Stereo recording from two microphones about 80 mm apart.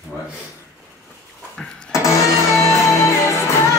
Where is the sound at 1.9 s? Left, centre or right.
Left.